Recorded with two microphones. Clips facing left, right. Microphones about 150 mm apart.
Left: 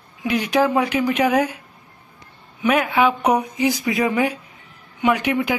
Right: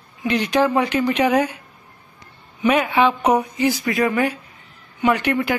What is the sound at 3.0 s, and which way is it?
A woman's voice, 10° left (ahead or behind).